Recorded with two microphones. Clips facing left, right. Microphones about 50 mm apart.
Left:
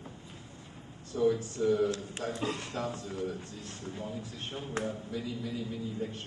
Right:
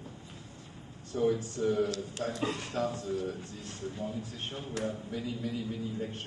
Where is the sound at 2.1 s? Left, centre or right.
Left.